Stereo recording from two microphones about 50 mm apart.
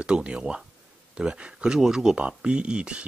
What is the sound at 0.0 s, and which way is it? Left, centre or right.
Speech, centre.